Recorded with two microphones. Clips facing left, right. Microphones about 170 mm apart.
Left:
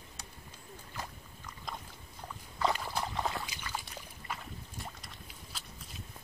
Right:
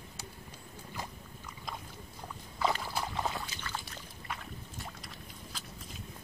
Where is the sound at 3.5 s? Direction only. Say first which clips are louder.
Even; 10° left (ahead or behind).